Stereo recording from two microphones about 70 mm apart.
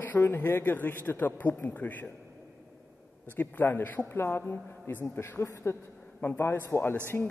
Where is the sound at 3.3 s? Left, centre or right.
Left.